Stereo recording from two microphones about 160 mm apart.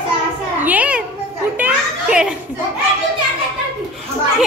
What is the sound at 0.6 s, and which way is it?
Children playing, 10° right (ahead or behind).